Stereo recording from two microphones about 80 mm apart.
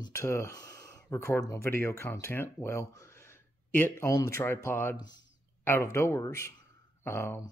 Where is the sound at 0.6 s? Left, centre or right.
Left.